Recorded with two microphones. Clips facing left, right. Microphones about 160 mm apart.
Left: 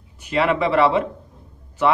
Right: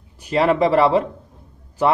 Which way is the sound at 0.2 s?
35° right (ahead or behind).